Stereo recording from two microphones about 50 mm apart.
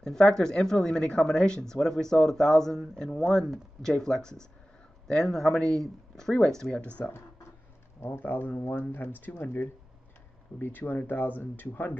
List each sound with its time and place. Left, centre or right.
0.0 s speech: centre
7.0 s speech: left
8.1 s speech: left